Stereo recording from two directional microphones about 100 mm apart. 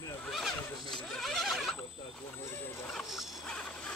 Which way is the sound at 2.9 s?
5° left (ahead or behind).